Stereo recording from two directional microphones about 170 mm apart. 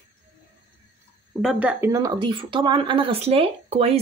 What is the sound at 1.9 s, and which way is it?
Speech, 25° right (ahead or behind).